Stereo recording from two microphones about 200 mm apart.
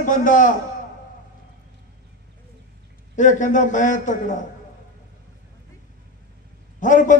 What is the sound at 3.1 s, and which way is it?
A man's voice, 40° left (ahead or behind).